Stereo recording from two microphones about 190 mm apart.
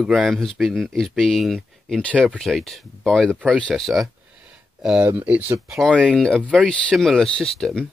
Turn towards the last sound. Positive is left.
turn(degrees=0)  # may be behind; listen again after turning